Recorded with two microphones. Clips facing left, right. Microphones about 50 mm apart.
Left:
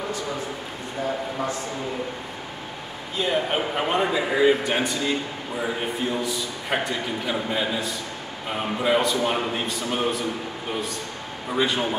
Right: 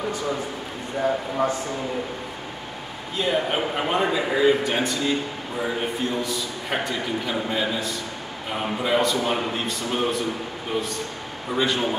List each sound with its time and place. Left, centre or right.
3.2 s a man's voice: centre
11.5 s a man's voice: centre